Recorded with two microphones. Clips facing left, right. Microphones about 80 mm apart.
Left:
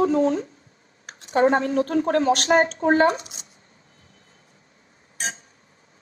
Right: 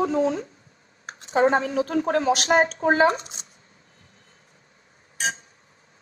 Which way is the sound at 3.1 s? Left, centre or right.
Right.